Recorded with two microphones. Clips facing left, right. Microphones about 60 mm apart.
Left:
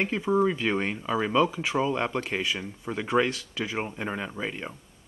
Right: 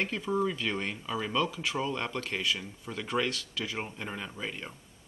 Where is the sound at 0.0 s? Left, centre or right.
Left.